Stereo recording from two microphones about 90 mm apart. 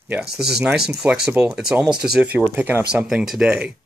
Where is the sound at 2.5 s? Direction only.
25° right (ahead or behind).